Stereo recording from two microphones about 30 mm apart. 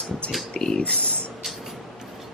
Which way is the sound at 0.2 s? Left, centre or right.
Left.